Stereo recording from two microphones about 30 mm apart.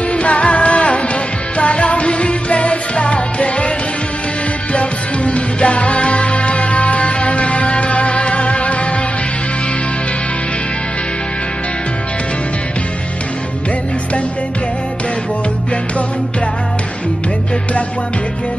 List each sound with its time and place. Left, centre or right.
0.1 s music: left
4.7 s music: left